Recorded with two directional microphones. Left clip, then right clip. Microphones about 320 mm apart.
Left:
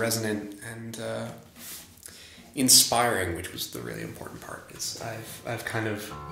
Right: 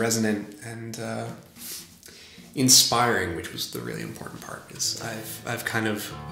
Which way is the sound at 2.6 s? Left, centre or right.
Centre.